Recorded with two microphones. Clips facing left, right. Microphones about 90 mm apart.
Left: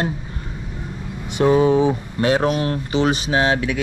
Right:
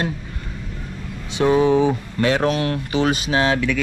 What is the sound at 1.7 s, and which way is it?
Speech, 20° left (ahead or behind).